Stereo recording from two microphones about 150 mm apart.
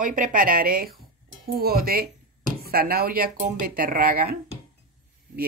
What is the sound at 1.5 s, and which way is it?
Speech, 90° right.